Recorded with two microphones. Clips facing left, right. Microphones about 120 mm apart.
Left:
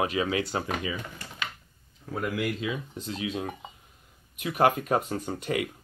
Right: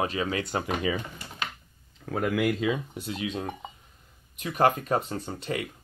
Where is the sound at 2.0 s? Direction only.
70° right (ahead or behind).